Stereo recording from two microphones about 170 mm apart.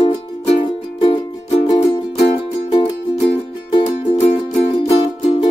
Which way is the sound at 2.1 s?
35° left (ahead or behind).